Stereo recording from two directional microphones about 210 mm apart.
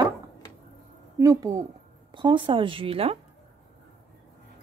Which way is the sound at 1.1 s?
15° right (ahead or behind).